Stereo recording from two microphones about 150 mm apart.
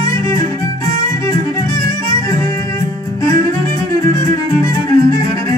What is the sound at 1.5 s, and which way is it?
Music, 20° left (ahead or behind).